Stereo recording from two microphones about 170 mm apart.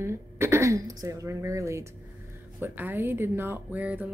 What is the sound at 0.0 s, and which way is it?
A woman's voice, 15° right (ahead or behind).